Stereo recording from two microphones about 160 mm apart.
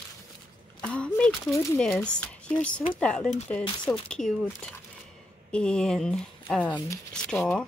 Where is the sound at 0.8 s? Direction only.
5° left (ahead or behind).